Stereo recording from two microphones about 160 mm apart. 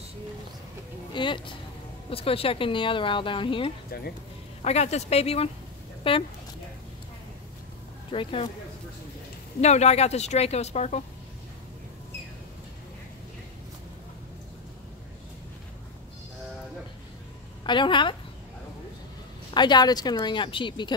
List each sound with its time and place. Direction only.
1.1 s speech: 30° left (ahead or behind)
4.6 s speech: 45° left (ahead or behind)
8.1 s speech: 35° left (ahead or behind)
9.6 s a woman's voice: 45° left (ahead or behind)
17.6 s a woman's voice: 30° left (ahead or behind)
19.5 s speech: 25° left (ahead or behind)